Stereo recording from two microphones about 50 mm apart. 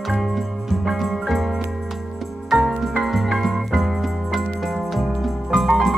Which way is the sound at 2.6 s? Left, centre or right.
Centre.